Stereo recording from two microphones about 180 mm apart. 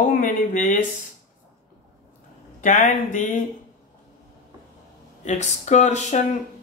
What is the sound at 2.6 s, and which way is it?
Speech, 45° left (ahead or behind).